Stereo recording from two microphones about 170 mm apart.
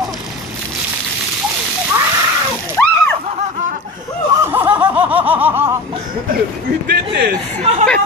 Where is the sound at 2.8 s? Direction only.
10° left (ahead or behind).